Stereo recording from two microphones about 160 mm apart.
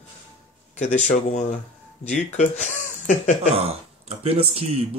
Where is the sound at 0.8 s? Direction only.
45° left (ahead or behind).